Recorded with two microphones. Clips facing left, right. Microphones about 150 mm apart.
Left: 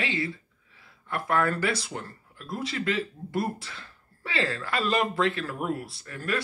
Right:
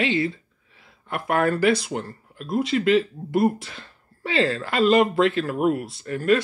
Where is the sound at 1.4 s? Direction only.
20° right (ahead or behind).